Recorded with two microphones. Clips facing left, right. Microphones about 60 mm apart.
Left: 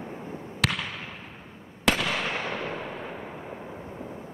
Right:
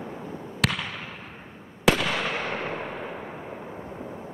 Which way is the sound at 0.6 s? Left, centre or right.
Centre.